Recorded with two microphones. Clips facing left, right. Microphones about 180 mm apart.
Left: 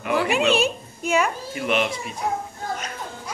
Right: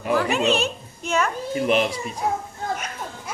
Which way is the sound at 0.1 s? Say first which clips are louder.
Even; 5° left (ahead or behind).